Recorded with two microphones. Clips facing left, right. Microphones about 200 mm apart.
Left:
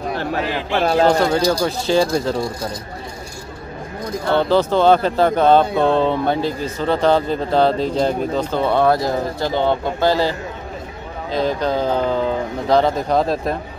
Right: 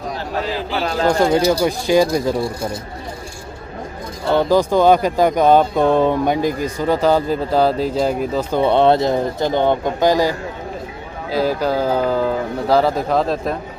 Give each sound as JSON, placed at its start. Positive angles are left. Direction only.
{"t": 0.1, "sound": "a sound", "side_deg": 60}
{"t": 1.0, "sound": "speech", "side_deg": -10}
{"t": 4.3, "sound": "speech", "side_deg": -10}
{"t": 11.3, "sound": "speech", "side_deg": -5}